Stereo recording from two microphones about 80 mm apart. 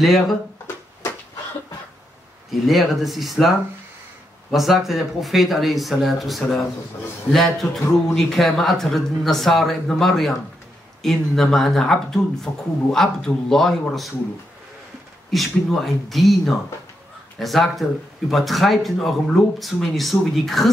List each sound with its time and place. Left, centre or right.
0.0 s a man's voice: centre
2.5 s a man's voice: centre
4.5 s a man's voice: centre
12.5 s a man's voice: left
12.9 s a man's voice: centre
15.3 s a man's voice: centre